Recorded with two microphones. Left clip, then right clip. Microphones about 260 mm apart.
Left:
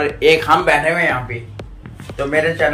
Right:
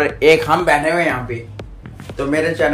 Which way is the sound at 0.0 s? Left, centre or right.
Centre.